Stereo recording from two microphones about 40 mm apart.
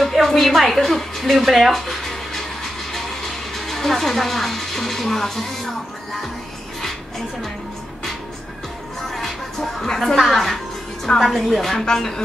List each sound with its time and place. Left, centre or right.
0.0 s music: centre
9.1 s music: centre
9.8 s a woman's voice: centre